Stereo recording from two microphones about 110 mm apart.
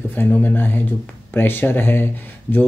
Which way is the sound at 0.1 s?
20° left (ahead or behind).